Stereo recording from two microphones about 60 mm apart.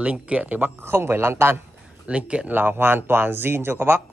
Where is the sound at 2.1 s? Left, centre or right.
Centre.